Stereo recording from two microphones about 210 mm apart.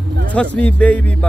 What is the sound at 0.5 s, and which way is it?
Speech, 5° left (ahead or behind).